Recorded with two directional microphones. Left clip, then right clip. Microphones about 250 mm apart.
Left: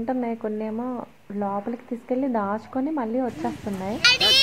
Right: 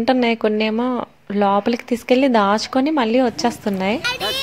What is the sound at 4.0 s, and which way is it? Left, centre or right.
Speech, right.